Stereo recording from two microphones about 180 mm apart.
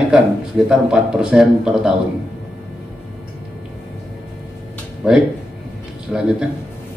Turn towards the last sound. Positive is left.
turn(degrees=0)  # may be behind; listen again after turning